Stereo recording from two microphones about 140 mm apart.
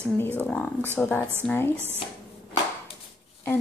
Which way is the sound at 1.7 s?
15° right (ahead or behind).